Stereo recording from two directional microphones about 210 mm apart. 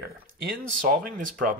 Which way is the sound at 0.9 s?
40° right (ahead or behind).